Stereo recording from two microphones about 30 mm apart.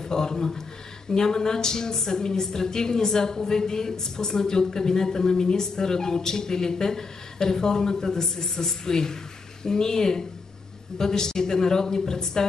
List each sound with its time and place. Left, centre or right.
0.0 s a woman's voice: left